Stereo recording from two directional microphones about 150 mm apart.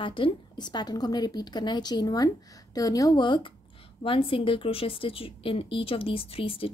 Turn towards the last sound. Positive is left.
turn(degrees=40)  # may be behind; listen again after turning